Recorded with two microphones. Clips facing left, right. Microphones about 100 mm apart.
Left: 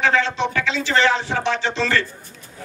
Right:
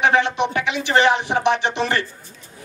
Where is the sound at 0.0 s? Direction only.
20° right (ahead or behind).